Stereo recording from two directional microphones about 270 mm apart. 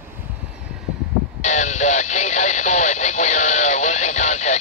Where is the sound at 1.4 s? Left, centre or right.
Left.